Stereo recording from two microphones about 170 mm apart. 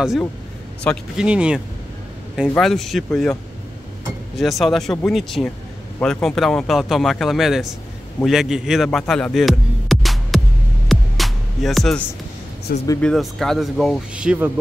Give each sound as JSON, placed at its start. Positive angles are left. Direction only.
{"t": 1.1, "sound": "speech", "side_deg": -5}
{"t": 4.4, "sound": "speech", "side_deg": 0}
{"t": 10.9, "sound": "music", "side_deg": 0}
{"t": 12.7, "sound": "speech", "side_deg": 65}
{"t": 13.0, "sound": "speech", "side_deg": 0}